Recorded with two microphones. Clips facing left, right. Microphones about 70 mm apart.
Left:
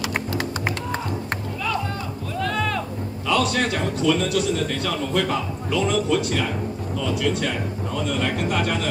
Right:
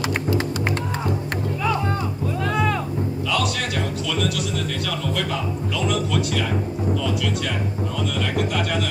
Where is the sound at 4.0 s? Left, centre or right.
Left.